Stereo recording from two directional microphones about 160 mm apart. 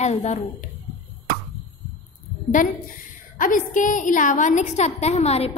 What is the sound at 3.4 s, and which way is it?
A woman's voice, 55° left (ahead or behind).